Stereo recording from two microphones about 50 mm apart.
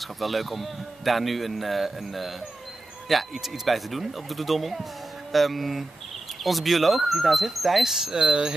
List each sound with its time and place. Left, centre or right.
0.0 s speech: centre
8.3 s cricket: centre